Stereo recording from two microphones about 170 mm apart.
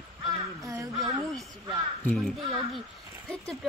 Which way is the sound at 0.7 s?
20° right (ahead or behind).